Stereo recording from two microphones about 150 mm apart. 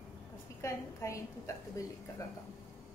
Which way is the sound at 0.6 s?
20° left (ahead or behind).